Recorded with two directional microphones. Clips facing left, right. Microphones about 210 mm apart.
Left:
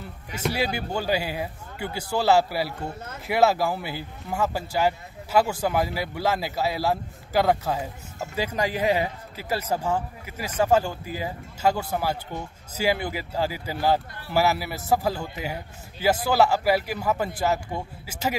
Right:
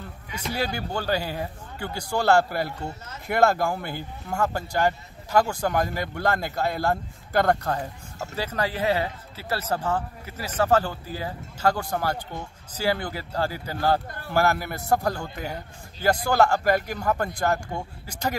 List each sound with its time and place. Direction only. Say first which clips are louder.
0.5 s a man's voice: left 1 dB; 10° left (ahead or behind)